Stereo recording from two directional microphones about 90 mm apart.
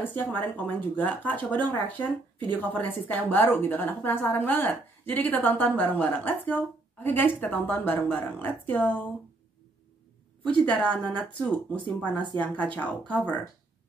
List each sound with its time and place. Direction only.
0.0 s a woman's voice: 20° left (ahead or behind)
10.4 s speech: 15° left (ahead or behind)